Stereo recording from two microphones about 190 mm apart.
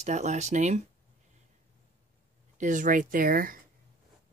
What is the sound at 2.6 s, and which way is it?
Speech, 45° right (ahead or behind).